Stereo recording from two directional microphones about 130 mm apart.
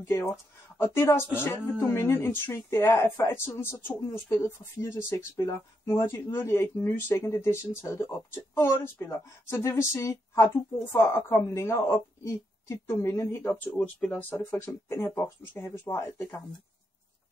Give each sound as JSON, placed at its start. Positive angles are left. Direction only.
{"t": 0.3, "sound": "speech", "side_deg": 20}